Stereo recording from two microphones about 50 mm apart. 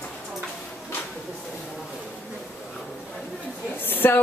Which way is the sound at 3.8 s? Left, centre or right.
Left.